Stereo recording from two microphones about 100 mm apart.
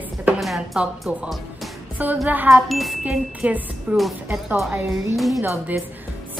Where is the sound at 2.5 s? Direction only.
Centre (ahead or behind).